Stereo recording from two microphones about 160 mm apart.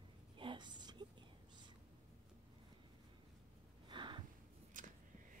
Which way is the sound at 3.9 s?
30° right (ahead or behind).